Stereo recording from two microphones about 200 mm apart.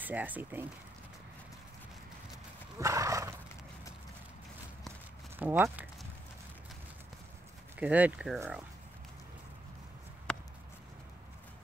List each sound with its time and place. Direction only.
0.0 s speech: 10° right (ahead or behind)
2.8 s speech: 15° right (ahead or behind)
5.4 s speech: 10° right (ahead or behind)
7.7 s speech: 5° right (ahead or behind)
10.3 s a sound: 5° left (ahead or behind)